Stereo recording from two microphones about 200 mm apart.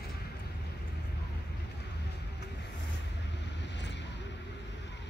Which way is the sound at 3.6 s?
60° left (ahead or behind).